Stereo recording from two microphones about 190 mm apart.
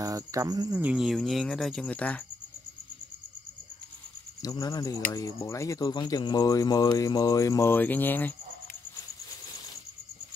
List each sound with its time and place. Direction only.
0.0 s speech: 15° right (ahead or behind)
0.8 s speech: centre (ahead or behind)
4.4 s speech: 20° left (ahead or behind)